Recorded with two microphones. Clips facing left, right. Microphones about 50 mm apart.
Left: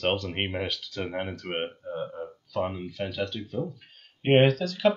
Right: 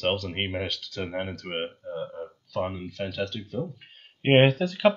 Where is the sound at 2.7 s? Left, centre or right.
Centre.